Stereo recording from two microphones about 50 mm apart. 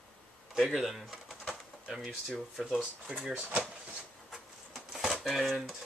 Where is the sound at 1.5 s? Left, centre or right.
Centre.